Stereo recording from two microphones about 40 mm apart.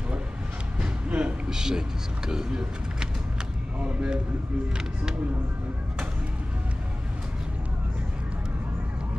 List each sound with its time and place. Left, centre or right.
1.0 s a sound: right
1.5 s speech: centre
3.8 s speech: right